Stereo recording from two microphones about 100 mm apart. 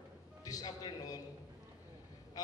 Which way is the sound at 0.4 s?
40° left (ahead or behind).